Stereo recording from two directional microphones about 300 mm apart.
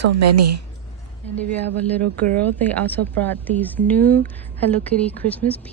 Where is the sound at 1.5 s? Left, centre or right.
Centre.